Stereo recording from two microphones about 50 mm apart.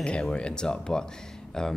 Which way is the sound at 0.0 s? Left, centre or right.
Centre.